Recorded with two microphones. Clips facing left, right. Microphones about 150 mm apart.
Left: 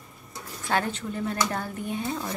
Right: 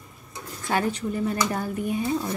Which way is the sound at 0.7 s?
10° right (ahead or behind).